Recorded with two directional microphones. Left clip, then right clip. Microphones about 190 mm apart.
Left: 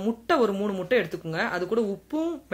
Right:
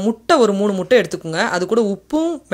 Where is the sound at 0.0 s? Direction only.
40° right (ahead or behind).